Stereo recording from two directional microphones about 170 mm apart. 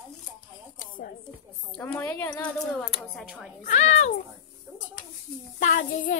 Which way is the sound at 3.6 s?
45° left (ahead or behind).